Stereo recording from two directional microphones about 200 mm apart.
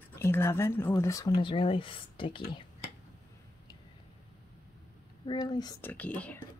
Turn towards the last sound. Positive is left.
turn(degrees=5)  # may be behind; listen again after turning